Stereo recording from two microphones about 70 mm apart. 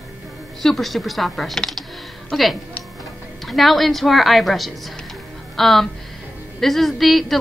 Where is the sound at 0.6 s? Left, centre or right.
Centre.